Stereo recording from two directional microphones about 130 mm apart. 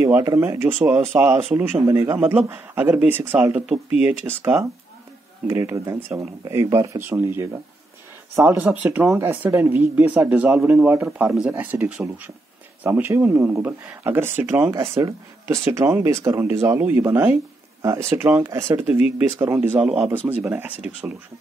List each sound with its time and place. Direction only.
0.0 s speech: 20° right (ahead or behind)